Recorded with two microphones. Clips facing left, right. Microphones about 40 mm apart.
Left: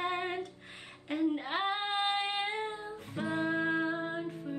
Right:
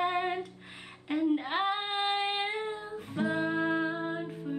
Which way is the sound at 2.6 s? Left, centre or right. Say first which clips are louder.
Right 2 dB; right.